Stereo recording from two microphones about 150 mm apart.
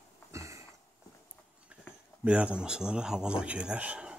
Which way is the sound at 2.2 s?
5° right (ahead or behind).